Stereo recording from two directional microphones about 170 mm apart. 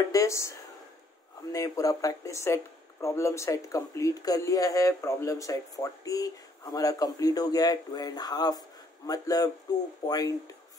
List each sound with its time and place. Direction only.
0.1 s speech: 20° left (ahead or behind)
1.5 s speech: 20° left (ahead or behind)